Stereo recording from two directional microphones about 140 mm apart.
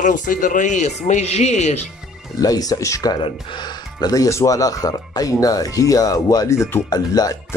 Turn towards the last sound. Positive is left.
turn(degrees=30)  # may be behind; listen again after turning